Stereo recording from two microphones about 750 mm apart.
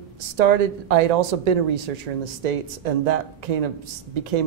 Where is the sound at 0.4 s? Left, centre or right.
Right.